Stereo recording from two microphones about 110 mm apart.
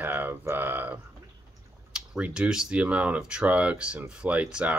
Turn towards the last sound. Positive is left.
turn(degrees=-10)  # may be behind; listen again after turning